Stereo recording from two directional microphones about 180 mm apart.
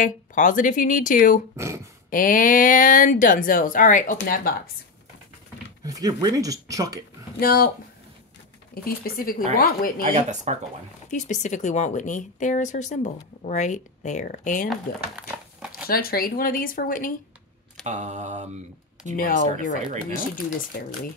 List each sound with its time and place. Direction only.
0.0 s speech: 45° left (ahead or behind)
1.6 s speech: 15° right (ahead or behind)
2.0 s speech: 50° left (ahead or behind)
5.9 s speech: 20° right (ahead or behind)
7.3 s speech: 55° left (ahead or behind)
8.8 s speech: 55° left (ahead or behind)
10.1 s mantra: 40° right (ahead or behind)
11.1 s speech: 45° left (ahead or behind)
14.7 s crumpling: 5° right (ahead or behind)
15.9 s speech: 55° left (ahead or behind)
17.8 s mantra: 40° right (ahead or behind)
19.1 s speech: 50° left (ahead or behind)